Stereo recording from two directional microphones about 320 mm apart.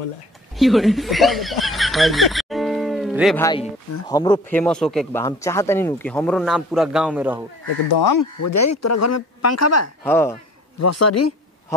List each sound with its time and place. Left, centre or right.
0.6 s speech: centre
3.4 s a man's voice: centre
8.1 s speech: left
10.0 s a man's voice: centre
10.8 s speech: left